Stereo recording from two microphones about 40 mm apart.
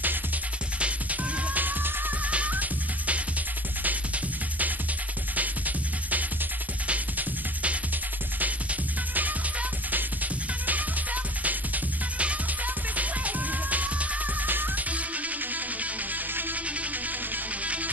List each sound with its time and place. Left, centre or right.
1.5 s music: right
2.2 s music: right
5.3 s music: right
9.1 s music: right
11.4 s music: right
14.5 s music: right
14.9 s music: right